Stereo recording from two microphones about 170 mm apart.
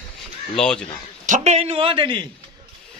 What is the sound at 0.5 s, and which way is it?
Speech, 5° left (ahead or behind).